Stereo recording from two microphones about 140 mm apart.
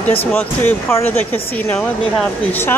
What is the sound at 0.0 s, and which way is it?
Speech, 45° left (ahead or behind).